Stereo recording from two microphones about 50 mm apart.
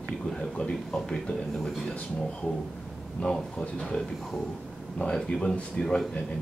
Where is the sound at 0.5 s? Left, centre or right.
Centre.